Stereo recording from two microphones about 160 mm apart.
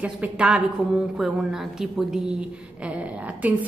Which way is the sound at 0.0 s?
5° right (ahead or behind).